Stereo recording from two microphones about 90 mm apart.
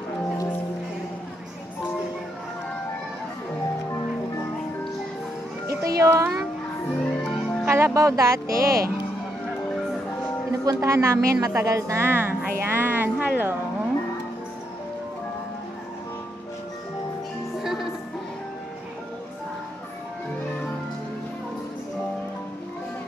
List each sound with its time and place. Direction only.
5.7 s music: 35° right (ahead or behind)
7.0 s music: 5° left (ahead or behind)
7.6 s speech: 30° right (ahead or behind)
10.6 s a woman's voice: 40° right (ahead or behind)
12.1 s a woman's voice: 25° right (ahead or behind)
12.5 s music: 25° right (ahead or behind)
17.6 s music: 5° right (ahead or behind)